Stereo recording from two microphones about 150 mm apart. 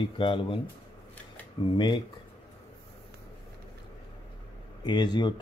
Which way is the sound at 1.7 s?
30° left (ahead or behind).